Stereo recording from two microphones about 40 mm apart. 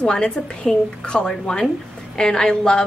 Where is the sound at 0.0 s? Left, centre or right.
Left.